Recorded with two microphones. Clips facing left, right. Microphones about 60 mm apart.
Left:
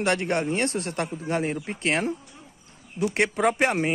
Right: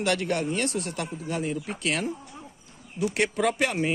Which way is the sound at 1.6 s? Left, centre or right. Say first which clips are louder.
Left 3 dB; left.